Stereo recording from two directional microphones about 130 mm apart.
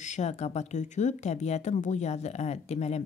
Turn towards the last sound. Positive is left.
turn(degrees=55)  # may be behind; listen again after turning